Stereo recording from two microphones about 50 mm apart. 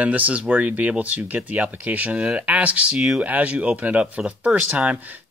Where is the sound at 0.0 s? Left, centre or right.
Right.